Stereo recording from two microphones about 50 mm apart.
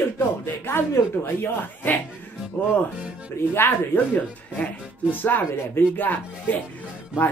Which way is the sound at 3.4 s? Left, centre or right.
Left.